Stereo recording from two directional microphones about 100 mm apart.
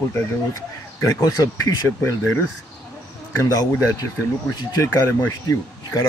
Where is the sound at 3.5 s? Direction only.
35° left (ahead or behind).